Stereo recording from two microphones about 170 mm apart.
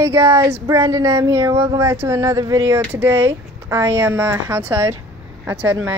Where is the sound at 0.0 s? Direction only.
15° right (ahead or behind).